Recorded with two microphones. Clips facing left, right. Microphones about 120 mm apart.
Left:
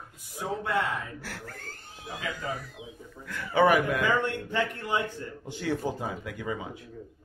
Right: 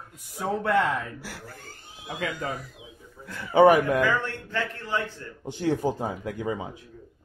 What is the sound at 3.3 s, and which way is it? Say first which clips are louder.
Speech: right 5 dB; 20° right (ahead or behind).